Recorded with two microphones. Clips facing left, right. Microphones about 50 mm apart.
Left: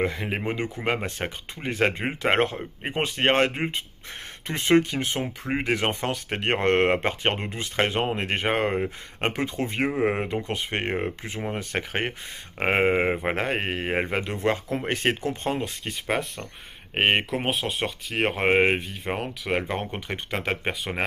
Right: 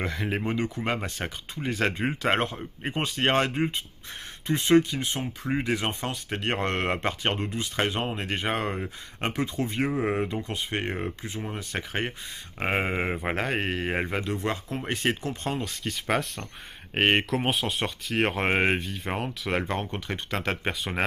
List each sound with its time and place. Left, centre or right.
0.0 s speech: left
16.1 s speech: centre
17.5 s speech: centre
19.8 s speech: left
20.3 s speech: centre